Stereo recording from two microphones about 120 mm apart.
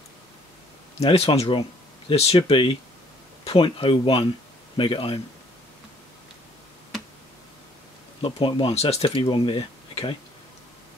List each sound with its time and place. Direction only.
0.9 s speech: 60° left (ahead or behind)
8.2 s speech: 45° left (ahead or behind)